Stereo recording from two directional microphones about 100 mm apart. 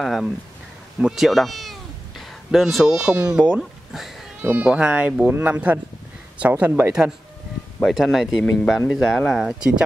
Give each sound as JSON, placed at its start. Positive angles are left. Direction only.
{"t": 0.0, "sound": "speech", "side_deg": 0}
{"t": 4.4, "sound": "speech", "side_deg": -20}
{"t": 9.5, "sound": "speech", "side_deg": -10}